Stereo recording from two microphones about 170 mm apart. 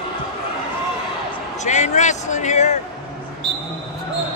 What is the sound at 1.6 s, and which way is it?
A man's voice, 45° left (ahead or behind).